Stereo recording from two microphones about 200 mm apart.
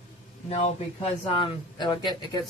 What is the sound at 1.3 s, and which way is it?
Speech, 25° left (ahead or behind).